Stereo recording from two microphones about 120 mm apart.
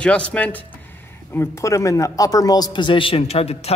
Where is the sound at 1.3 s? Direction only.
25° left (ahead or behind); by 3.8 s 60° left (ahead or behind).